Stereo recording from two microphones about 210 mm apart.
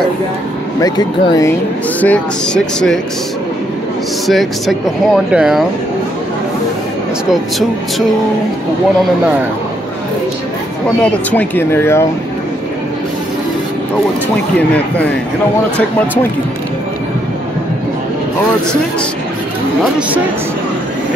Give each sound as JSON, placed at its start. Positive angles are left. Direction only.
{"t": 0.7, "sound": "speech", "side_deg": 20}
{"t": 2.0, "sound": "speech", "side_deg": 5}
{"t": 4.3, "sound": "speech", "side_deg": 0}
{"t": 11.0, "sound": "speech", "side_deg": 5}